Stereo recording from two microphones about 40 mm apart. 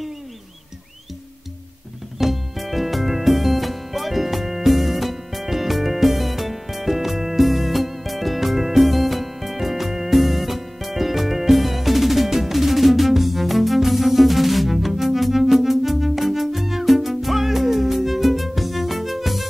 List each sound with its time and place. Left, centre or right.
2.1 s music: centre